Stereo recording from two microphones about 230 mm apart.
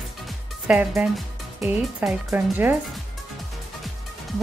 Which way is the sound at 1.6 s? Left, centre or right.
Centre.